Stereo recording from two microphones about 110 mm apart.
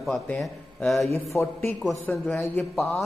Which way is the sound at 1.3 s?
25° left (ahead or behind).